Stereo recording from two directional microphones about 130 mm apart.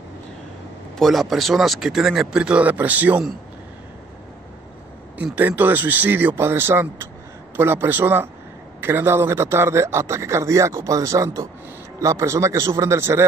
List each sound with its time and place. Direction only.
0.9 s speech: centre (ahead or behind)
5.1 s speech: 10° right (ahead or behind)